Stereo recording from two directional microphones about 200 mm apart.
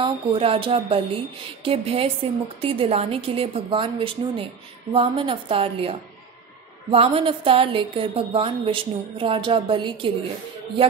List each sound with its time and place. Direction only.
0.0 s a woman's voice: 25° right (ahead or behind)